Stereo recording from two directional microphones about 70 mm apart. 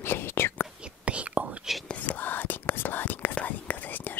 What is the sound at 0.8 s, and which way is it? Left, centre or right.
Whispering, centre.